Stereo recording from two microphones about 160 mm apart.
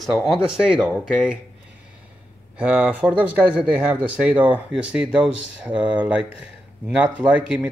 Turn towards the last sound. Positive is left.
turn(degrees=-5)  # may be behind; listen again after turning